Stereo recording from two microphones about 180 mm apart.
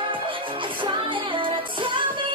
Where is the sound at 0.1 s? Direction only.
30° right (ahead or behind).